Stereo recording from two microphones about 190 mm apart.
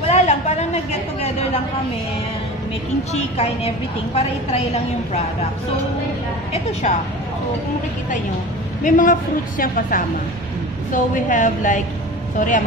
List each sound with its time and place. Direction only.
0.0 s a sound: 35° left (ahead or behind)
3.1 s a woman's voice: 35° left (ahead or behind)
8.8 s a woman's voice: 40° left (ahead or behind)